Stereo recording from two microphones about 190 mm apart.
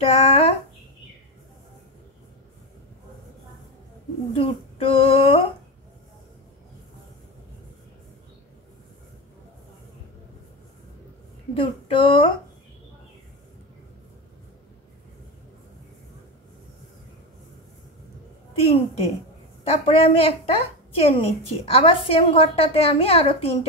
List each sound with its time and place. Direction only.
0.0 s a woman's voice: 30° left (ahead or behind)
4.3 s speech: 30° left (ahead or behind)
11.5 s a sound: 30° left (ahead or behind)
19.6 s a woman's voice: 30° left (ahead or behind)